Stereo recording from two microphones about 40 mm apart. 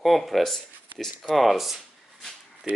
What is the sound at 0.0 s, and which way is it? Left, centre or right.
Speech, centre.